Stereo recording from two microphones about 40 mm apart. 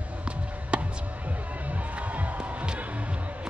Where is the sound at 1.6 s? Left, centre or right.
Right.